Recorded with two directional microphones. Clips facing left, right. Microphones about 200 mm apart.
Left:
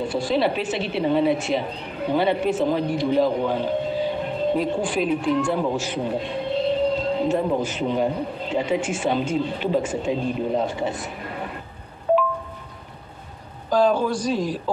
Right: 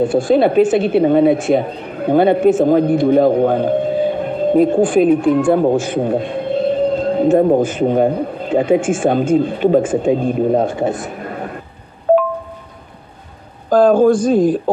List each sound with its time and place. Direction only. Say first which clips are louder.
0.0 s a woman's voice: right 9 dB; 50° right (ahead or behind)
12.1 s wind chime: right 7 dB; 55° right (ahead or behind)
13.7 s a woman's voice: right 9 dB; 50° right (ahead or behind)